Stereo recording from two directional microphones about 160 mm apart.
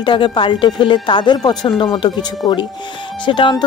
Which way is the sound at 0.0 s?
30° left (ahead or behind).